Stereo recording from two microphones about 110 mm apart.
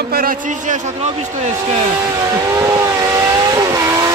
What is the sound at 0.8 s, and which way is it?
Speech, 85° right.